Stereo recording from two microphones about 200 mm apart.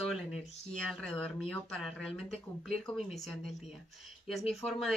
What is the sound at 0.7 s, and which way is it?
Speech, 5° left (ahead or behind).